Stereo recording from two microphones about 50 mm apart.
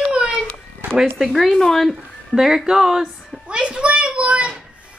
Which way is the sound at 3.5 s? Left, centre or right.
Right.